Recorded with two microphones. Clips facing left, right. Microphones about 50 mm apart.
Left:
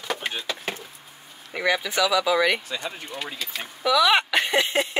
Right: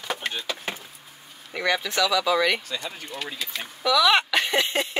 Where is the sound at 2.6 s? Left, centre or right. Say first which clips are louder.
Left 1 dB; centre.